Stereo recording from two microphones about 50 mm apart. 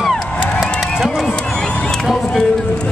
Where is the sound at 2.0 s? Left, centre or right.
Centre.